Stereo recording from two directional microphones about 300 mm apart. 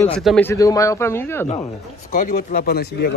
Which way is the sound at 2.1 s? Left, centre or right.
Left.